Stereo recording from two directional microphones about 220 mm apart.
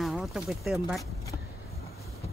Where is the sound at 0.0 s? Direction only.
Centre (ahead or behind).